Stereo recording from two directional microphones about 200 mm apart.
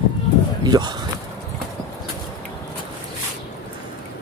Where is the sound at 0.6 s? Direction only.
20° right (ahead or behind).